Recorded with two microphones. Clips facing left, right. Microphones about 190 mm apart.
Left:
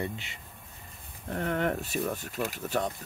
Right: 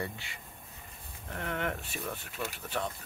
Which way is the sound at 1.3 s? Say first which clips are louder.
Left 6 dB; 40° left (ahead or behind).